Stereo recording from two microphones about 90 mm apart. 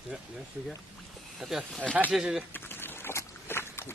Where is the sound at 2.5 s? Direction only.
25° left (ahead or behind).